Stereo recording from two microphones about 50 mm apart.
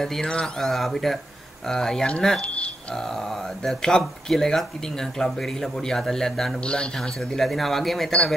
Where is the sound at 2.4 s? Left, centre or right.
Left.